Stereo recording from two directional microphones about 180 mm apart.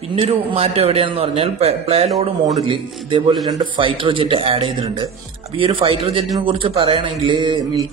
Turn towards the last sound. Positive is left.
turn(degrees=-25)  # may be behind; listen again after turning